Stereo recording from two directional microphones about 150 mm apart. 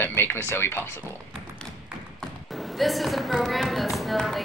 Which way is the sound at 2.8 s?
Centre (ahead or behind).